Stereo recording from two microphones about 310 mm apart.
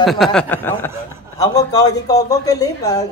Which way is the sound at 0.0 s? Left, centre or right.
Centre.